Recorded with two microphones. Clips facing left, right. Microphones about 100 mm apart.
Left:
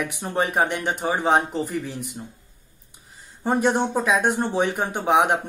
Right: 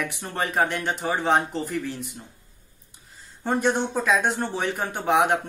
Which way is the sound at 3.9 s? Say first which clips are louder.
Left 2 dB; 15° left (ahead or behind).